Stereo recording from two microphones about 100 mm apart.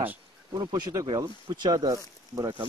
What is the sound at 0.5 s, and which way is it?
Speech, 40° right (ahead or behind).